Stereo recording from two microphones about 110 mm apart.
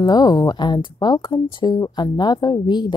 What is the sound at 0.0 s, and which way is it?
A woman's voice, 35° left (ahead or behind).